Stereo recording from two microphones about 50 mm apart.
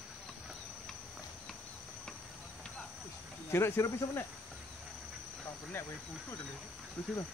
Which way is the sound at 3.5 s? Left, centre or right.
Left.